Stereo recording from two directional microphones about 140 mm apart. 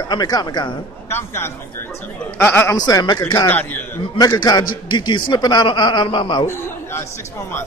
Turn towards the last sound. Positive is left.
turn(degrees=35)  # may be behind; listen again after turning